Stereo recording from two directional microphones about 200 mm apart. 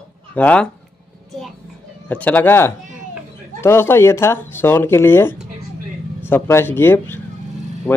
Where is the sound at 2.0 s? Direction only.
5° left (ahead or behind).